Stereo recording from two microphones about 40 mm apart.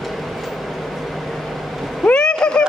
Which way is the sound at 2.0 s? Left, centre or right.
Centre.